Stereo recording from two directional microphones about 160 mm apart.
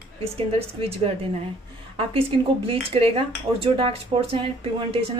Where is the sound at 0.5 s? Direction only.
35° right (ahead or behind).